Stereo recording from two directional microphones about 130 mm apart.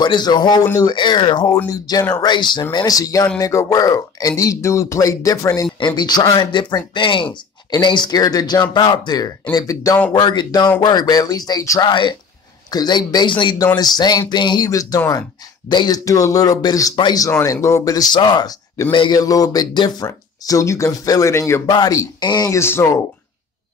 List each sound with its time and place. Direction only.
0.0 s speech: 35° left (ahead or behind)
11.9 s speech: 40° left (ahead or behind)
22.6 s speech: 20° left (ahead or behind)